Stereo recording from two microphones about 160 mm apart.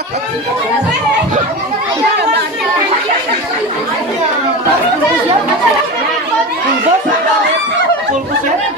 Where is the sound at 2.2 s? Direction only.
90° right.